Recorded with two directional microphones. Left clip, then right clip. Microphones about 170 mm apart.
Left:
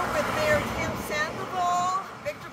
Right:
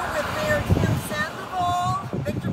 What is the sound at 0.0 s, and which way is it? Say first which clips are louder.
Vehicle: right 1 dB; 55° left (ahead or behind).